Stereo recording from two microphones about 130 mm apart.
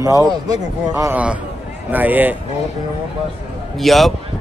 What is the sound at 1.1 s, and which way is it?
A man's voice, 10° right (ahead or behind).